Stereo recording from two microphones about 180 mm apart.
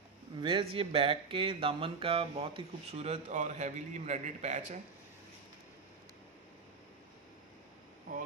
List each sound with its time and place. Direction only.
0.4 s speech: 30° right (ahead or behind)